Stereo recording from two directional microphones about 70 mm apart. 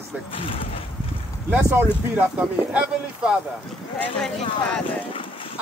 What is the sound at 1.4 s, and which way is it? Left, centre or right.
Speech, right.